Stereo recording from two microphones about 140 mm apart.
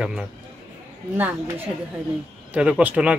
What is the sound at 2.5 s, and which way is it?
Speech, 5° right (ahead or behind).